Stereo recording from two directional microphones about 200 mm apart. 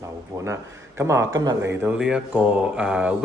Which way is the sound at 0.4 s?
15° right (ahead or behind).